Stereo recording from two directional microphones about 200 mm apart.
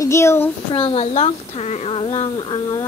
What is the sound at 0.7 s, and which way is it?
A woman's voice, 30° left (ahead or behind).